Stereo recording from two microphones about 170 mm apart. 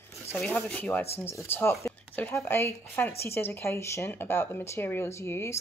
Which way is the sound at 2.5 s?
15° left (ahead or behind).